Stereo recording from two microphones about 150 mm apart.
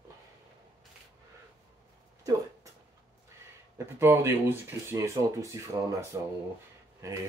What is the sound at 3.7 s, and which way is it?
Speech, 15° right (ahead or behind).